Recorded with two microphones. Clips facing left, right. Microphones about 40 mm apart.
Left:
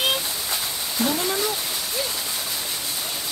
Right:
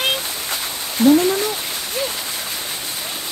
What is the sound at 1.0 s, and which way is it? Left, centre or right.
Speech, right.